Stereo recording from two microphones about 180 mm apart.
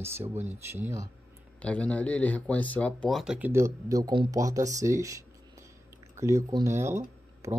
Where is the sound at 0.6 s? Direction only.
15° right (ahead or behind).